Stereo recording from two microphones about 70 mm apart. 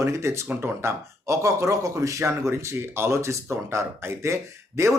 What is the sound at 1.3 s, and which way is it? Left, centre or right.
A man's voice, right.